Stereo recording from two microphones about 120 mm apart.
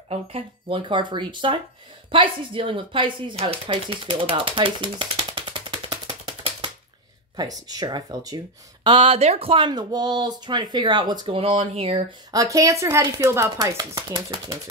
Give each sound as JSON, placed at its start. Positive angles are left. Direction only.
{"t": 0.1, "sound": "speech", "side_deg": -50}
{"t": 7.3, "sound": "speech", "side_deg": -30}
{"t": 8.8, "sound": "speech", "side_deg": -45}
{"t": 11.3, "sound": "speech", "side_deg": -50}
{"t": 12.3, "sound": "speech", "side_deg": -30}